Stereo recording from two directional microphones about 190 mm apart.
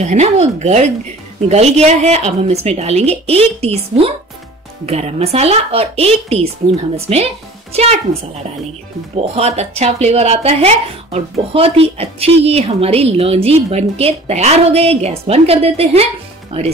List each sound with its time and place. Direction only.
0.0 s a woman's voice: 35° right (ahead or behind)
9.1 s a woman's voice: 35° right (ahead or behind)